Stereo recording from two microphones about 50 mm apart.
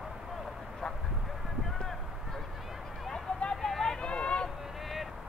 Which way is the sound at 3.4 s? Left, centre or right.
Centre.